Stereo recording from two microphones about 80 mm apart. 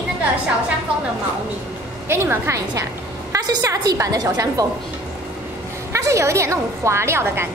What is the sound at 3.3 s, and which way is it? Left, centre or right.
A woman's voice, right.